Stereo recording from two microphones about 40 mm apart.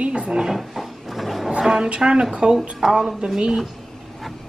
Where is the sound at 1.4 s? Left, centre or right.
Centre.